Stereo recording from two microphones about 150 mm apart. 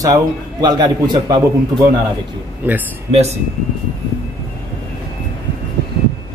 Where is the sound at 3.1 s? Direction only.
45° right (ahead or behind).